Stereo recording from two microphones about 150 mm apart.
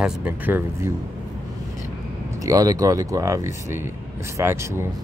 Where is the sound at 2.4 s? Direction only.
25° right (ahead or behind).